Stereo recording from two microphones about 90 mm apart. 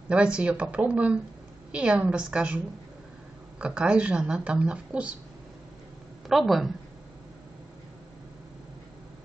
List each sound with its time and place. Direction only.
0.1 s speech: 10° right (ahead or behind)
6.2 s a woman's voice: centre (ahead or behind)